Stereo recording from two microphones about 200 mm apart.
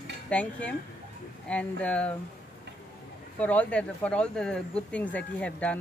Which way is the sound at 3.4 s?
5° left (ahead or behind).